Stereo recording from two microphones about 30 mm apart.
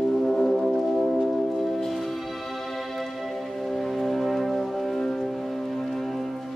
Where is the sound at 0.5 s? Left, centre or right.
Centre.